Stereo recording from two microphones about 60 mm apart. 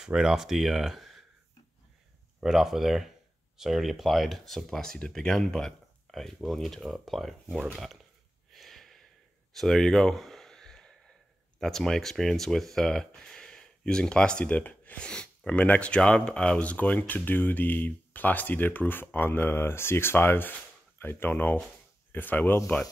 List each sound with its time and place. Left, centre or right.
0.0 s speech: centre
2.4 s speech: centre
8.5 s a sound: centre
11.6 s speech: centre; by 22.6 s left